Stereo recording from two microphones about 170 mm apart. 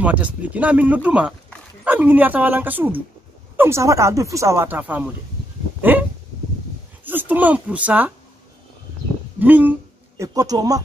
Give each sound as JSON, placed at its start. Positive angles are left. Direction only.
{"t": 0.0, "sound": "speech", "side_deg": -10}
{"t": 5.8, "sound": "dog", "side_deg": -10}
{"t": 7.1, "sound": "speech", "side_deg": -10}
{"t": 9.4, "sound": "speech", "side_deg": -10}